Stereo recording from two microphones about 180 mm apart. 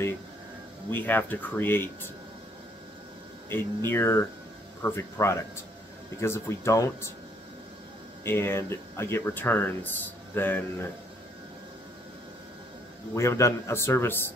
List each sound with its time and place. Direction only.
0.8 s speech: 10° left (ahead or behind)
3.4 s speech: 15° left (ahead or behind)
8.2 s speech: 15° left (ahead or behind)
13.1 s speech: 15° left (ahead or behind)